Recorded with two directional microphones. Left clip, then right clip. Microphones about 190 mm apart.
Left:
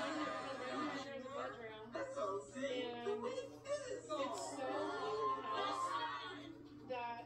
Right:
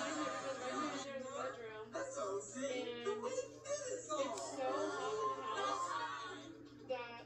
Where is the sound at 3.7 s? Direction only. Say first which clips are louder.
Right 1 dB; 15° right (ahead or behind).